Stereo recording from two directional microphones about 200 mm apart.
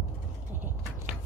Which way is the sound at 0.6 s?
10° right (ahead or behind).